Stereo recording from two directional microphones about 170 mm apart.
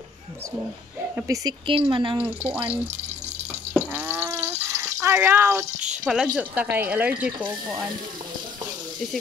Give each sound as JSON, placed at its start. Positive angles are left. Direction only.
{"t": 1.1, "sound": "speech", "side_deg": -20}
{"t": 1.7, "sound": "speech", "side_deg": -30}
{"t": 2.2, "sound": "speech", "side_deg": -10}
{"t": 3.7, "sound": "a sound", "side_deg": -10}